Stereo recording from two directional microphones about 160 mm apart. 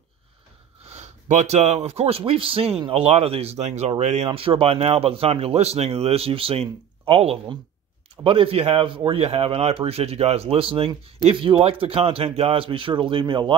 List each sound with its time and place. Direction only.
0.9 s speech: 45° right (ahead or behind)